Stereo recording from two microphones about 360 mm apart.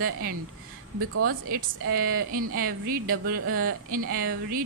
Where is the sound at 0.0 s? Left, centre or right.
Right.